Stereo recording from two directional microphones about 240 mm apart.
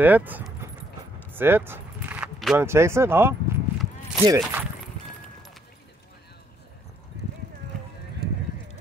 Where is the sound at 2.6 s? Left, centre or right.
Centre.